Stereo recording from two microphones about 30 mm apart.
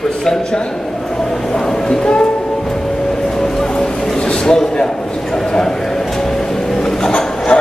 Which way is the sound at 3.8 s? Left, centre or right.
Left.